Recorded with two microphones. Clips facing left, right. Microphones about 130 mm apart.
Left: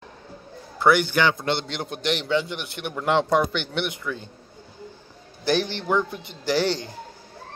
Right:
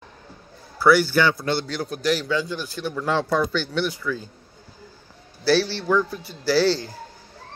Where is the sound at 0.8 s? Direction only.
20° left (ahead or behind).